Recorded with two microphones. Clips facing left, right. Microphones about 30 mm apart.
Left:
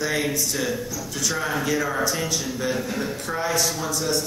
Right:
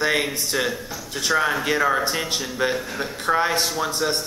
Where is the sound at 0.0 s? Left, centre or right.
Right.